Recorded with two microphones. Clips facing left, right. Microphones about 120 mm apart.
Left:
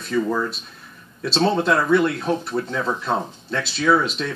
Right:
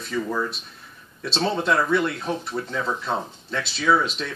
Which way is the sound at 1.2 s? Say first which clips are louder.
Left 5 dB; centre (ahead or behind).